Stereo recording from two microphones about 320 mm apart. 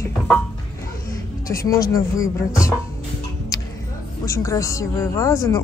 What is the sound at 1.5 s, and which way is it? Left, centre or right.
Speech, centre.